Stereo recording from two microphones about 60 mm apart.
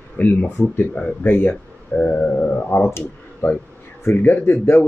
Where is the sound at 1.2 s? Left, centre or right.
Left.